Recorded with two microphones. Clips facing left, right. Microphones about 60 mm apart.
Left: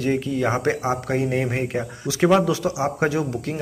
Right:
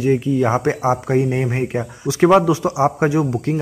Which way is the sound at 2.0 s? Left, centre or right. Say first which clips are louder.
Right 5 dB; right.